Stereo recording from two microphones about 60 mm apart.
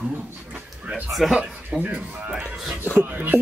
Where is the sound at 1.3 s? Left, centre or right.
Centre.